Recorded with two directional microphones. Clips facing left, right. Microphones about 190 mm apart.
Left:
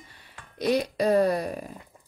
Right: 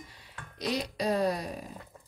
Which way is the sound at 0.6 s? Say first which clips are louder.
Left 8 dB; 55° left (ahead or behind).